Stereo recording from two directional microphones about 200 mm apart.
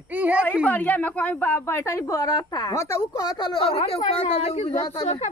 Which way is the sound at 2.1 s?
20° left (ahead or behind).